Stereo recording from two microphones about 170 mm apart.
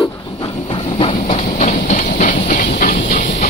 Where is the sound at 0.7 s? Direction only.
30° left (ahead or behind).